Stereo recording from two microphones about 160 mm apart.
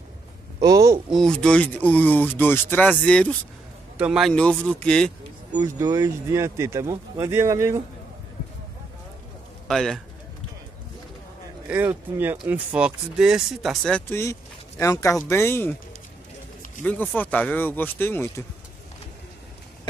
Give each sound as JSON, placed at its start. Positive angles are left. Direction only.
{"t": 0.6, "sound": "speech", "side_deg": -25}
{"t": 1.1, "sound": "speech", "side_deg": 5}
{"t": 4.0, "sound": "a man's voice", "side_deg": -5}
{"t": 4.3, "sound": "speech", "side_deg": 5}
{"t": 5.5, "sound": "speech", "side_deg": -20}
{"t": 9.7, "sound": "a man's voice", "side_deg": 5}
{"t": 11.7, "sound": "speech", "side_deg": -10}
{"t": 16.8, "sound": "speech", "side_deg": 10}